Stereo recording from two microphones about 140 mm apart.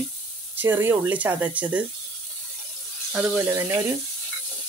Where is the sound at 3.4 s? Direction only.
20° right (ahead or behind).